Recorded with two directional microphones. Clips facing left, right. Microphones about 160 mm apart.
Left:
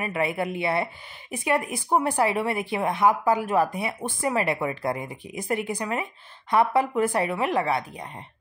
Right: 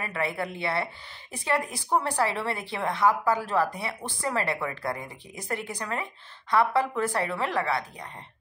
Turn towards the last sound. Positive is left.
turn(degrees=15)  # may be behind; listen again after turning